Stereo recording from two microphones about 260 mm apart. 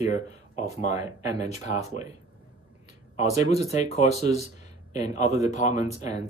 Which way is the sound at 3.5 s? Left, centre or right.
Left.